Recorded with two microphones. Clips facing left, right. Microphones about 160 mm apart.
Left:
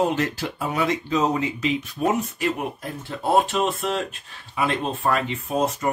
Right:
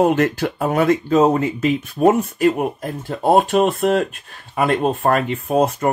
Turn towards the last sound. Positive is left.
turn(degrees=-60)  # may be behind; listen again after turning